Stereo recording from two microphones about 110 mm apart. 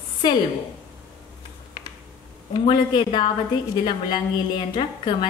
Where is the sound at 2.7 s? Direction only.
45° left (ahead or behind).